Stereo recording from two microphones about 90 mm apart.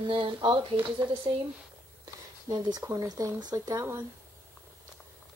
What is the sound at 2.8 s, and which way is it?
Speech, 35° right (ahead or behind).